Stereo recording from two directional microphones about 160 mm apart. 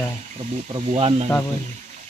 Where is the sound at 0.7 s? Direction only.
35° right (ahead or behind).